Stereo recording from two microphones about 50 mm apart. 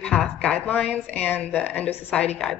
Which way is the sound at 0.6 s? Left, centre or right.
Left.